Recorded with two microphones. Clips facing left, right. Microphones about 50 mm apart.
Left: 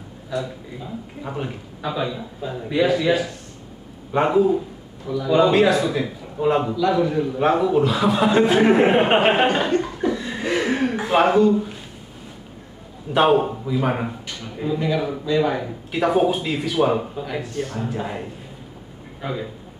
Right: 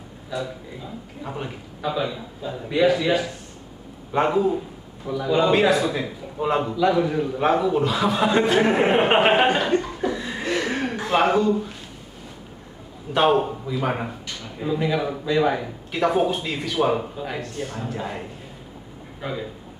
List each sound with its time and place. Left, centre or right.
1.2 s a man's voice: centre
2.9 s a man's voice: centre
5.0 s a man's voice: centre
9.8 s cough: centre
10.4 s a sound: centre
11.0 s a man's voice: centre
13.1 s a man's voice: centre
15.2 s speech: centre
15.9 s a man's voice: centre
19.2 s a man's voice: centre